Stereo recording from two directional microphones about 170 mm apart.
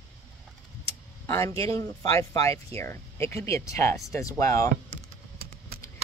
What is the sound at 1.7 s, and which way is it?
Speech, 20° left (ahead or behind).